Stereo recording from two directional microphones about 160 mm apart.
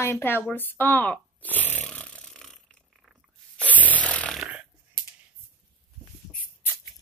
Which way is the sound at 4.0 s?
5° left (ahead or behind).